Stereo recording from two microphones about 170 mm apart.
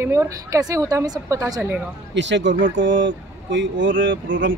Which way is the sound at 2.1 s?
90° right.